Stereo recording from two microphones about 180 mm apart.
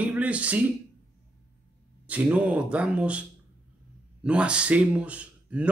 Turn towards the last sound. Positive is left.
turn(degrees=-10)  # may be behind; listen again after turning